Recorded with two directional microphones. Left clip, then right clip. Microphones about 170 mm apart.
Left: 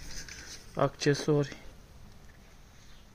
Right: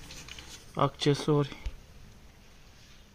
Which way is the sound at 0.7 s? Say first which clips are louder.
Right 1 dB; 30° right (ahead or behind).